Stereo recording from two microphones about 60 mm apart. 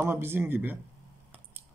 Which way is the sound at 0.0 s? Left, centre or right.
Right.